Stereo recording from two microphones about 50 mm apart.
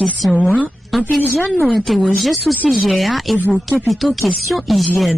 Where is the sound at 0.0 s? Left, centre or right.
Centre.